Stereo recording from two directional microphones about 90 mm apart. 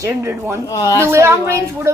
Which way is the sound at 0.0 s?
30° right (ahead or behind).